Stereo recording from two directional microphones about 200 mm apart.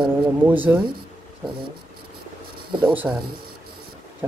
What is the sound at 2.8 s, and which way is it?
Speech, 10° right (ahead or behind).